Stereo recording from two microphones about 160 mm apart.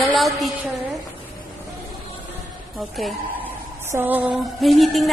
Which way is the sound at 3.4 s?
10° right (ahead or behind).